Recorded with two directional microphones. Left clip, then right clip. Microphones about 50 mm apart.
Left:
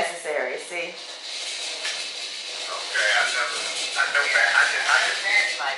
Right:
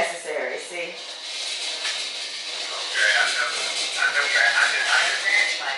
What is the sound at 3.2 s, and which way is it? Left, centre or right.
Music, centre.